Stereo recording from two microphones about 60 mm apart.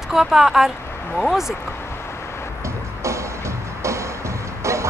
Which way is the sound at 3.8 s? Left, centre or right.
Right.